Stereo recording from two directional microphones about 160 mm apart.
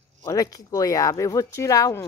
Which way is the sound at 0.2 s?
20° left (ahead or behind).